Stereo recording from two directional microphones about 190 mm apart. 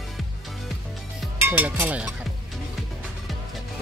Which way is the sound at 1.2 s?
10° right (ahead or behind).